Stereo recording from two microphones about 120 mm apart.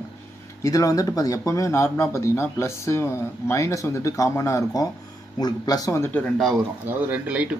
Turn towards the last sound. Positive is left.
turn(degrees=-10)  # may be behind; listen again after turning